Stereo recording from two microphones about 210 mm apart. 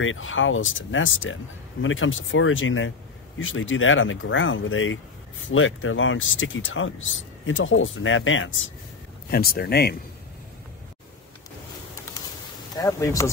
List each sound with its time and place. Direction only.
0.0 s speech: 65° left (ahead or behind)
9.3 s speech: 45° left (ahead or behind)
12.7 s speech: 15° left (ahead or behind)